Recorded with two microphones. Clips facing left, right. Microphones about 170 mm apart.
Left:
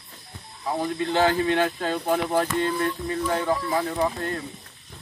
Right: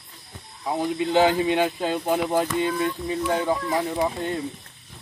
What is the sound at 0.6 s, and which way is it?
Speech, 10° right (ahead or behind).